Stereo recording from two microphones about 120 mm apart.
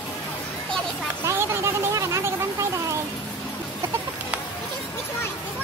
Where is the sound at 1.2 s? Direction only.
20° right (ahead or behind).